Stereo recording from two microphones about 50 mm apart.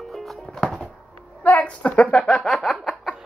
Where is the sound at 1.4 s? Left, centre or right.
Left; by 3.2 s centre.